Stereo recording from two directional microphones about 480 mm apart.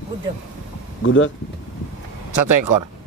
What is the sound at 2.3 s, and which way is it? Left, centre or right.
Speech, right.